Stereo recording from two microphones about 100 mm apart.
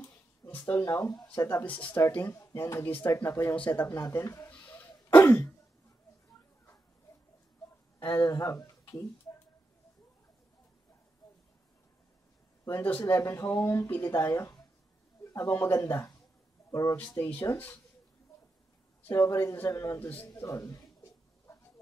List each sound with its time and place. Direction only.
0.0 s a sound: 20° left (ahead or behind)
0.8 s speech: 30° left (ahead or behind)
1.6 s speech: 15° left (ahead or behind)
3.5 s speech: 15° left (ahead or behind)
3.8 s speech: 30° left (ahead or behind)
4.5 s throat clearing: 20° left (ahead or behind)
8.0 s speech: 25° left (ahead or behind)
12.6 s speech: 25° left (ahead or behind)
17.2 s speech: 25° left (ahead or behind)
19.0 s speech: 25° left (ahead or behind)
21.5 s a sound: 30° left (ahead or behind)